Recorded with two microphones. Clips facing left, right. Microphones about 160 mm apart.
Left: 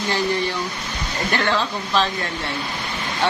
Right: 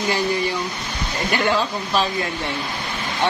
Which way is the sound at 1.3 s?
15° right (ahead or behind).